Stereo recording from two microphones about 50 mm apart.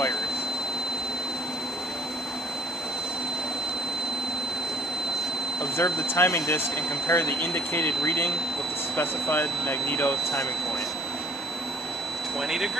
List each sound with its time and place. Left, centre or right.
5.8 s speech: left
12.4 s speech: centre